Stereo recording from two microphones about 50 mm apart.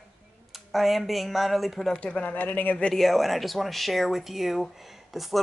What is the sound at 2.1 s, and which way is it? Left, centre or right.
Speech, left.